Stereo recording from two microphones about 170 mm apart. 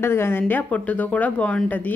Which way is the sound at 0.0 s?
15° left (ahead or behind).